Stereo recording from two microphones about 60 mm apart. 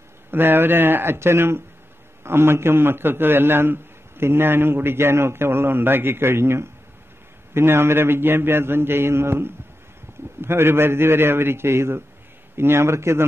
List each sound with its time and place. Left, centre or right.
0.3 s a man's voice: right